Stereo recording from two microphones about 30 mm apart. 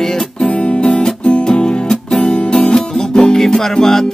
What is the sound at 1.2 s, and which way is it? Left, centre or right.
Music, left.